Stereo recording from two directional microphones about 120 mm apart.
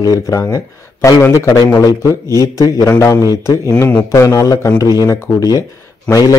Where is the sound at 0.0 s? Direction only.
30° left (ahead or behind).